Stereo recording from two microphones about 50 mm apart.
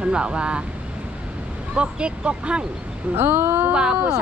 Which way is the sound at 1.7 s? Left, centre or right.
Right.